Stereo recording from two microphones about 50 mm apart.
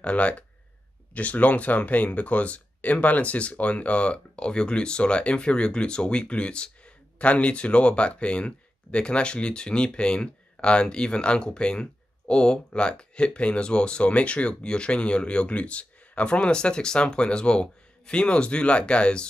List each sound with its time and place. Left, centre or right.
0.0 s speech: left